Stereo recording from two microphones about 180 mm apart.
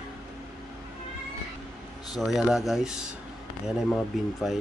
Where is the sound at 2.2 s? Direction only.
Centre (ahead or behind).